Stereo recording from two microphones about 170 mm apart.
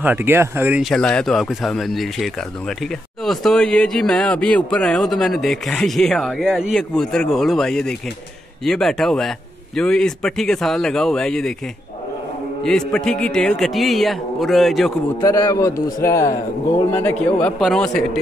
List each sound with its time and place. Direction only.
0.0 s speech: 10° right (ahead or behind)
0.8 s speech: 5° left (ahead or behind)
12.6 s speech: 5° left (ahead or behind)
15.1 s a man's voice: 20° left (ahead or behind); by 18.2 s 5° left (ahead or behind)